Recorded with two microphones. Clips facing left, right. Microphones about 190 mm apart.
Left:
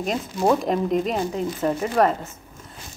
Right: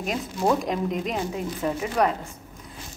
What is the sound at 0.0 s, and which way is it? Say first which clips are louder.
Speech: left 3 dB; 5° right (ahead or behind).